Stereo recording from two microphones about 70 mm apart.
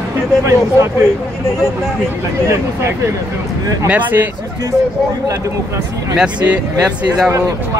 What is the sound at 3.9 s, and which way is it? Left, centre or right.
Speech, right.